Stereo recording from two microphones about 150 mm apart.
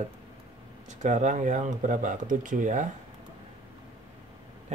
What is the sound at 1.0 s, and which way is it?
Speech, 55° right (ahead or behind).